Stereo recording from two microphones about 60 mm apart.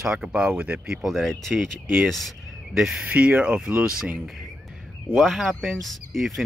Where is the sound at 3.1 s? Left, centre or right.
Right.